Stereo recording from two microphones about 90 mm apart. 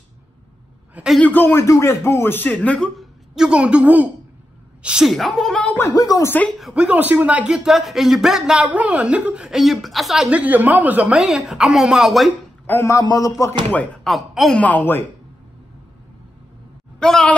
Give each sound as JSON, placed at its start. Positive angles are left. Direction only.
{"t": 1.2, "sound": "speech", "side_deg": 20}
{"t": 3.0, "sound": "a woman's voice", "side_deg": -10}
{"t": 5.6, "sound": "speech", "side_deg": 15}
{"t": 5.9, "sound": "a man's voice", "side_deg": 40}
{"t": 6.2, "sound": "speech", "side_deg": 20}
{"t": 6.7, "sound": "speech", "side_deg": -15}
{"t": 7.5, "sound": "speech", "side_deg": -5}
{"t": 10.3, "sound": "speech", "side_deg": -15}
{"t": 11.1, "sound": "speech", "side_deg": -5}
{"t": 12.6, "sound": "speech", "side_deg": 25}
{"t": 12.9, "sound": "a man's voice", "side_deg": 40}
{"t": 14.0, "sound": "speech", "side_deg": 0}
{"t": 14.6, "sound": "speech", "side_deg": 20}
{"t": 17.0, "sound": "speech", "side_deg": 5}